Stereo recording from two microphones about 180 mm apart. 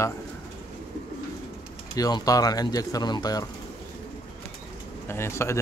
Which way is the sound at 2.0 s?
20° left (ahead or behind).